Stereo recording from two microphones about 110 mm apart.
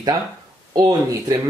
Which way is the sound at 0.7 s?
40° right (ahead or behind).